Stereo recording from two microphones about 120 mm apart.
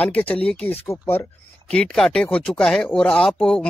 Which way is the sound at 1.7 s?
5° left (ahead or behind).